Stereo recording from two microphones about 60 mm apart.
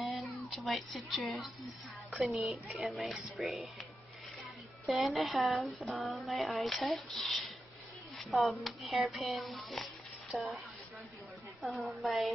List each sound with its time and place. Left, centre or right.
0.0 s music: centre
2.1 s a woman's voice: centre
2.4 s speech: right
2.8 s speech: centre
4.9 s speech: centre
11.6 s speech: centre